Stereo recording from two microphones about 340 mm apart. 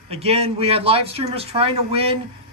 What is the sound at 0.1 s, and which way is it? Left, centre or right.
Speech, centre.